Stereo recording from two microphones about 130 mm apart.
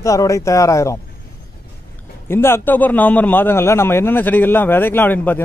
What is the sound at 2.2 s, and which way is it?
A man's voice, 20° left (ahead or behind).